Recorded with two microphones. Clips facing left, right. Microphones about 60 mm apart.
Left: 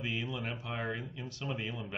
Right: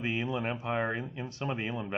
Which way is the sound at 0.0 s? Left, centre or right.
Right.